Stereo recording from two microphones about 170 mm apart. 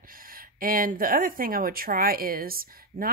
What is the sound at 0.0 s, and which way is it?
Speech, 55° right (ahead or behind).